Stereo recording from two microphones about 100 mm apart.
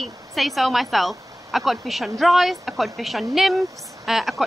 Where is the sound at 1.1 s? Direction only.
35° right (ahead or behind).